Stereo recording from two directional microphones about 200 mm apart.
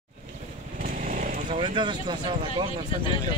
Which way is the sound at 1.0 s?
40° right (ahead or behind).